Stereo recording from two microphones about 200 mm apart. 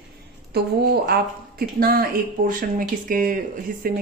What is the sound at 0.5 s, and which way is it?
A woman's voice, 50° right (ahead or behind).